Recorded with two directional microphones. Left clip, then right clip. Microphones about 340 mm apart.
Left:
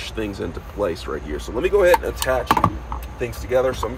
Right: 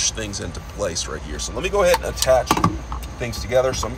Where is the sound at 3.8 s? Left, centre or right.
Centre.